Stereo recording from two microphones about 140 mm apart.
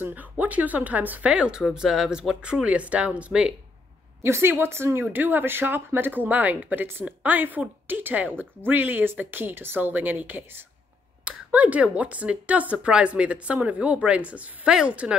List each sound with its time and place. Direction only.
0.0 s speech: 10° right (ahead or behind)